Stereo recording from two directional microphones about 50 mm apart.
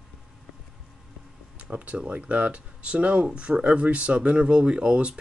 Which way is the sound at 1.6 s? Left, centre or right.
Right.